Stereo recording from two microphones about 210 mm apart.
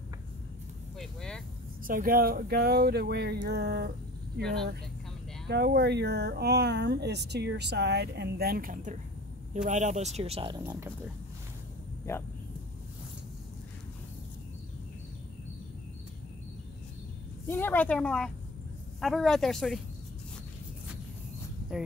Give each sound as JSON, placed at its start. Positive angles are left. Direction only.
{"t": 0.9, "sound": "vehicle", "side_deg": 5}
{"t": 1.9, "sound": "speech", "side_deg": -45}
{"t": 4.4, "sound": "speech", "side_deg": 5}
{"t": 5.5, "sound": "speech", "side_deg": -50}
{"t": 10.6, "sound": "speech", "side_deg": -15}
{"t": 12.1, "sound": "a woman's voice", "side_deg": 10}
{"t": 17.5, "sound": "a woman's voice", "side_deg": 10}
{"t": 21.7, "sound": "speech", "side_deg": 0}